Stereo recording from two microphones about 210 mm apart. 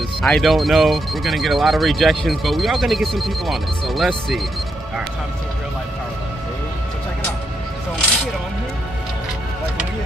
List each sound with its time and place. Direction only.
0.2 s speech: centre (ahead or behind)